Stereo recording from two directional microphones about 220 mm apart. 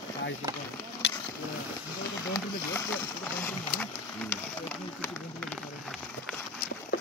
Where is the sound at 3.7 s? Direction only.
40° left (ahead or behind).